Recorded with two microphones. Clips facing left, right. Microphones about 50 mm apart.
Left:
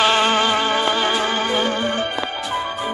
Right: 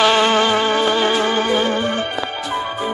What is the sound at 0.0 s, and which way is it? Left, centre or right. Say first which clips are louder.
Music: right 2 dB; left.